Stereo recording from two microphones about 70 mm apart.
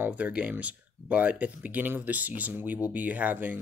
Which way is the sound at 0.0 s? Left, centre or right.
Right.